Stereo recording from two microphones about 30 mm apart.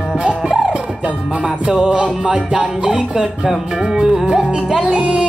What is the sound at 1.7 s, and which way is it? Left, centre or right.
Music, right.